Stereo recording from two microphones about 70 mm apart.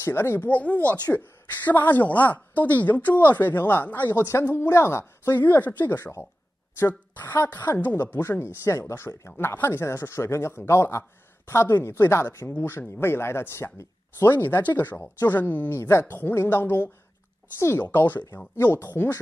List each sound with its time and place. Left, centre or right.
0.0 s speech: left
0.5 s a woman's voice: left
7.6 s a woman's voice: left